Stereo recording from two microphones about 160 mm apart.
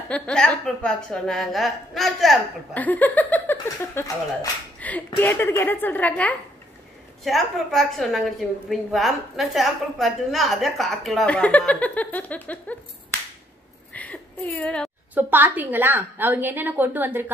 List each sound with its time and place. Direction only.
0.1 s a woman's voice: 5° left (ahead or behind)
3.6 s speech: 20° left (ahead or behind)
4.7 s a woman's voice: 10° left (ahead or behind)
13.9 s a sound: 10° left (ahead or behind)
15.1 s a woman's voice: 10° right (ahead or behind)